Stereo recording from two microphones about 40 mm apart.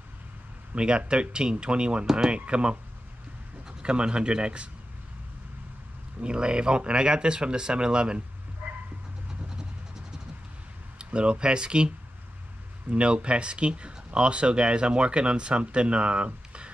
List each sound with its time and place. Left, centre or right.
0.7 s speech: right
6.2 s speech: right
8.6 s dog: right
11.0 s speech: right
12.9 s speech: right